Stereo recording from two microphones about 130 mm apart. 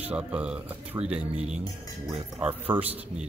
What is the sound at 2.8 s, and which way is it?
Speech, 50° right (ahead or behind).